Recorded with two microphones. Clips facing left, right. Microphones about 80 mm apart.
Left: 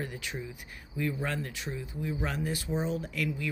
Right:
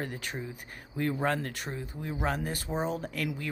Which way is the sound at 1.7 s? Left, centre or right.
Right.